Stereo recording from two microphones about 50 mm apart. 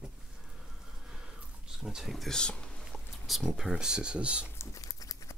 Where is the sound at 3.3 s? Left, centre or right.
Centre; by 4.5 s right.